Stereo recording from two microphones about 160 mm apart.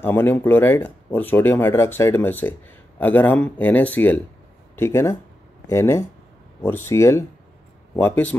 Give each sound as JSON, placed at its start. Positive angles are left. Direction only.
{"t": 0.0, "sound": "speech", "side_deg": 15}